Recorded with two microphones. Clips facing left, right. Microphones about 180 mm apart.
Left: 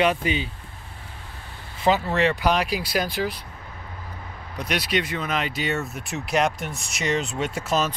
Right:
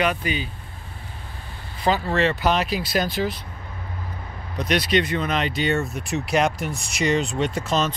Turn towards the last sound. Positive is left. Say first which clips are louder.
# right 1 dB
turn(degrees=5)  # may be behind; listen again after turning